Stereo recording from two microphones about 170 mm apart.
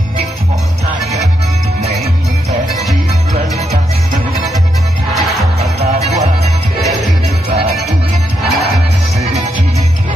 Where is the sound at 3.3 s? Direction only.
40° right (ahead or behind).